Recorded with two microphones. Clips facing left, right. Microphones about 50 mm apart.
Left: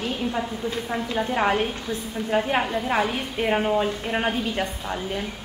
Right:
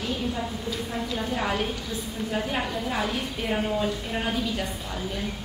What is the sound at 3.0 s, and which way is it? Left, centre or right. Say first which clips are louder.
A woman's voice: left 4 dB; left.